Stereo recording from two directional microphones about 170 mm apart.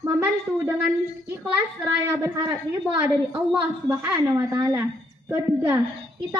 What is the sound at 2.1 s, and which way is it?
A woman's voice, 5° right (ahead or behind).